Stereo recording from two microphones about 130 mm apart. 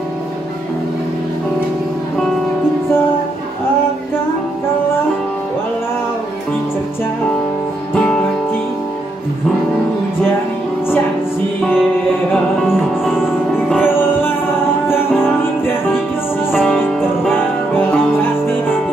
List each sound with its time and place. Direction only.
12.6 s music: 5° right (ahead or behind)
13.8 s music: 15° left (ahead or behind)
16.5 s music: 5° left (ahead or behind)